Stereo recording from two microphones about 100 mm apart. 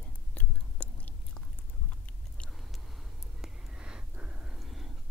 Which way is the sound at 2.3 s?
10° left (ahead or behind).